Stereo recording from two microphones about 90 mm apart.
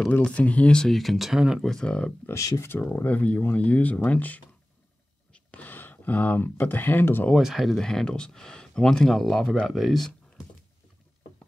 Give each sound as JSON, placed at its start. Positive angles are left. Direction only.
{"t": 0.2, "sound": "speech", "side_deg": 15}
{"t": 1.7, "sound": "speech", "side_deg": 5}
{"t": 2.2, "sound": "speech", "side_deg": 35}
{"t": 7.3, "sound": "speech", "side_deg": 0}